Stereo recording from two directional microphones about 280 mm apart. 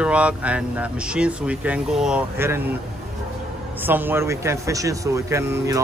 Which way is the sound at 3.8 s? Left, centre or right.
Centre.